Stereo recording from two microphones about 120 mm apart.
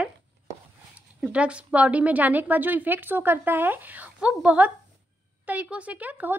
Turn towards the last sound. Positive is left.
turn(degrees=-15)  # may be behind; listen again after turning